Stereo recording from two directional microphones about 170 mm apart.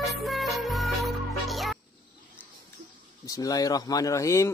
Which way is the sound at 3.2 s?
20° left (ahead or behind).